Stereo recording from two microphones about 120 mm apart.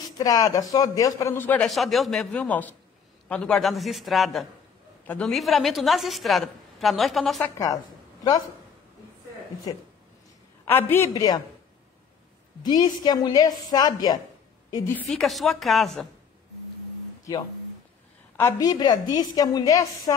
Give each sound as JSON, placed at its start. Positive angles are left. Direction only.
{"t": 0.2, "sound": "a woman's voice", "side_deg": 30}
{"t": 1.7, "sound": "a woman's voice", "side_deg": 0}
{"t": 5.0, "sound": "a man's voice", "side_deg": 10}
{"t": 5.3, "sound": "a woman's voice", "side_deg": 0}
{"t": 7.5, "sound": "a woman's voice", "side_deg": 30}
{"t": 9.7, "sound": "a woman's voice", "side_deg": 30}
{"t": 10.6, "sound": "a man's voice", "side_deg": 20}
{"t": 11.1, "sound": "a woman's voice", "side_deg": 35}
{"t": 12.6, "sound": "a woman's voice", "side_deg": 35}
{"t": 14.9, "sound": "a woman's voice", "side_deg": 10}
{"t": 18.6, "sound": "a woman's voice", "side_deg": 35}